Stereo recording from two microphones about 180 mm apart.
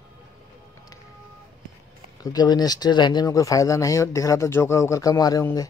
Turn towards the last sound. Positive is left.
turn(degrees=20)  # may be behind; listen again after turning